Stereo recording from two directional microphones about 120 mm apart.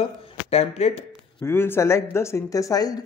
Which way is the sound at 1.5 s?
20° left (ahead or behind).